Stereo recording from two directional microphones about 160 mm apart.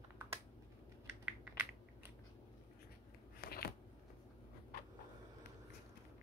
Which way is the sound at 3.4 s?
75° left (ahead or behind).